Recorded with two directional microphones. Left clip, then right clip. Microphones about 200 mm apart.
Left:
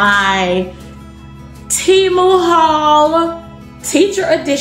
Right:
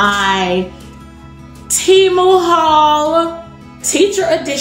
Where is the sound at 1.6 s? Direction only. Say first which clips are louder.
Right 1 dB; 20° left (ahead or behind).